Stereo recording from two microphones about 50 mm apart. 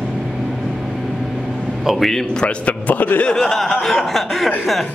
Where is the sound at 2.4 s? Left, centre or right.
Left.